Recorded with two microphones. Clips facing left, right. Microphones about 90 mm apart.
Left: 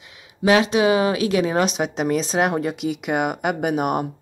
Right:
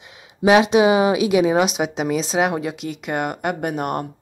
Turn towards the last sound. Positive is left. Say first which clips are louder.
# left 2 dB
turn(degrees=5)  # may be behind; listen again after turning